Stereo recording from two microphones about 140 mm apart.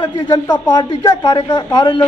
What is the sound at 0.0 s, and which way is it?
Speech, 30° left (ahead or behind).